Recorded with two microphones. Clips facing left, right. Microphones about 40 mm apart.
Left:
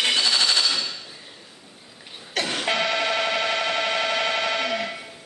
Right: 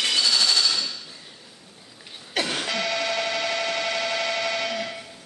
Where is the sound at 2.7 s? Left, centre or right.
Left.